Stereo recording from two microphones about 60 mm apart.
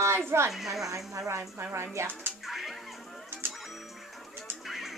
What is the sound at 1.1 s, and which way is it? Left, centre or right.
A child's voice, right.